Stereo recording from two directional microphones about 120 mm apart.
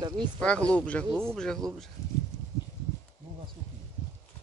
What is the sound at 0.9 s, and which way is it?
Speech, 10° left (ahead or behind).